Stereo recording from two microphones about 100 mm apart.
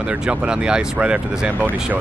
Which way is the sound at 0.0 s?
10° right (ahead or behind).